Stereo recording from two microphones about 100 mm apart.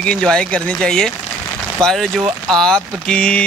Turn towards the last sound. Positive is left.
turn(degrees=10)  # may be behind; listen again after turning